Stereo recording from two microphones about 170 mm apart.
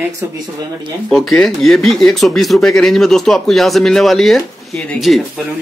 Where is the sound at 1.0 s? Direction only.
Centre (ahead or behind).